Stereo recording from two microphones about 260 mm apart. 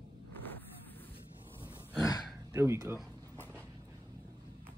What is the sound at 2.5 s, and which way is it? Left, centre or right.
Speech, centre.